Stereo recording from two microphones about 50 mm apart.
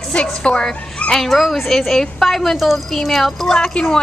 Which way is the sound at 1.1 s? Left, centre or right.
Centre.